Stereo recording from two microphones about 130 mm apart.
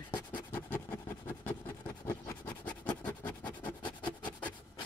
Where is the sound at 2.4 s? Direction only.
35° left (ahead or behind).